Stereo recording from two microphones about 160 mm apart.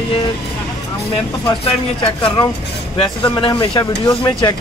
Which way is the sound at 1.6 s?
35° left (ahead or behind).